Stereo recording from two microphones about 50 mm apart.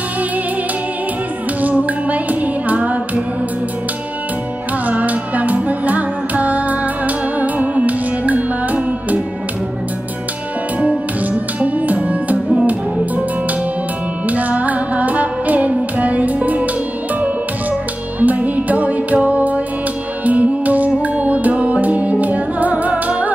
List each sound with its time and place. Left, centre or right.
1.6 s music: right
4.8 s music: right
11.6 s music: right
14.3 s music: right
18.2 s music: right